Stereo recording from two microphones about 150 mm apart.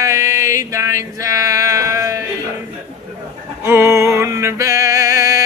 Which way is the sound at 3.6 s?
15° right (ahead or behind).